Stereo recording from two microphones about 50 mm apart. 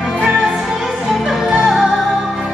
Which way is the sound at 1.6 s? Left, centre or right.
Centre.